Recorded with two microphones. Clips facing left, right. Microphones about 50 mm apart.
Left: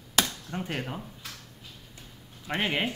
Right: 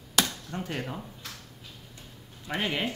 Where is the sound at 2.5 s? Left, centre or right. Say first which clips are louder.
Left 1 dB; left.